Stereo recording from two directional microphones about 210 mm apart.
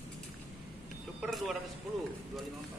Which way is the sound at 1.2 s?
Centre (ahead or behind).